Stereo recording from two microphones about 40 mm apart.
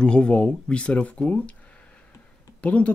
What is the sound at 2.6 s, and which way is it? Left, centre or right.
Speech, left.